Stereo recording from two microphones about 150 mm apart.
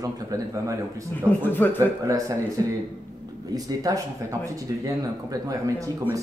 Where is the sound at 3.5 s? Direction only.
25° right (ahead or behind).